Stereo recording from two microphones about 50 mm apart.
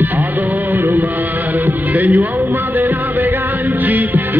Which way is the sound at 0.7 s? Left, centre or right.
Right.